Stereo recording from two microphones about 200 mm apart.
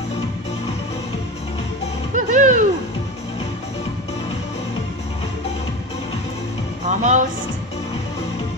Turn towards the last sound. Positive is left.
turn(degrees=-40)  # may be behind; listen again after turning